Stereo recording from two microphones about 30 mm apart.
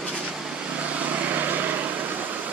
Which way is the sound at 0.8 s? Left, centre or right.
Right.